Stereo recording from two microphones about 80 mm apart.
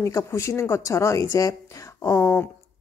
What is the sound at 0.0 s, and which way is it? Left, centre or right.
Speech, left.